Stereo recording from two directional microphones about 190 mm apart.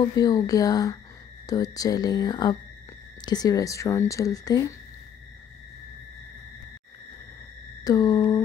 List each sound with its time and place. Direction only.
0.0 s speech: 20° left (ahead or behind)
7.8 s speech: 20° left (ahead or behind)